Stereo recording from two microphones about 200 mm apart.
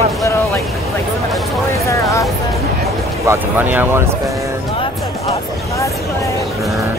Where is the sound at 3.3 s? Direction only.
10° right (ahead or behind).